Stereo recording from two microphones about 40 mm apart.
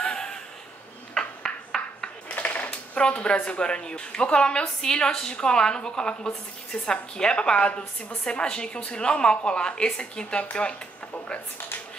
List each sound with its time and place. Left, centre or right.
0.0 s a sound: centre
2.2 s typewriter: left
2.6 s typewriter: left
3.4 s a woman's voice: left